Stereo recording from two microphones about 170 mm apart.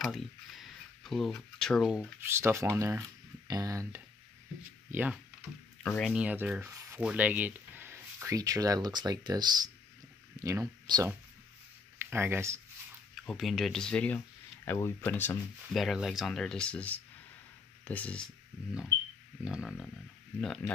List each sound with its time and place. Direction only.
0.0 s speech: centre (ahead or behind)
2.2 s speech: 15° right (ahead or behind)
5.8 s speech: 5° left (ahead or behind)
6.1 s speech: 10° right (ahead or behind)
6.7 s sanding: 20° right (ahead or behind)
7.0 s speech: 5° right (ahead or behind)
13.1 s speech: centre (ahead or behind)
15.7 s speech: centre (ahead or behind)
19.4 s speech: 5° right (ahead or behind)